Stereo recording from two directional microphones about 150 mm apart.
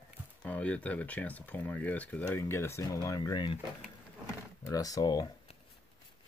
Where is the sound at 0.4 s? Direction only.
10° left (ahead or behind); by 3.5 s 30° left (ahead or behind).